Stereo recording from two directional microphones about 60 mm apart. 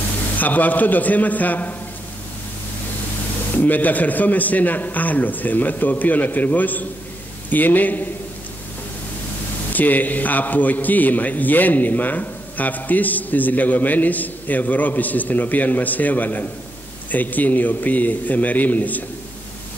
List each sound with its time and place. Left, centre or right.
0.4 s a man's voice: left
3.5 s a man's voice: left
9.7 s a man's voice: left